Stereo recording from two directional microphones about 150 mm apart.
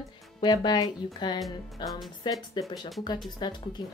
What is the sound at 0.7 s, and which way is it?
Speech, 30° left (ahead or behind).